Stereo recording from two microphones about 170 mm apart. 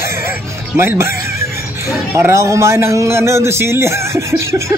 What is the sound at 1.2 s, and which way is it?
Speech, 15° right (ahead or behind).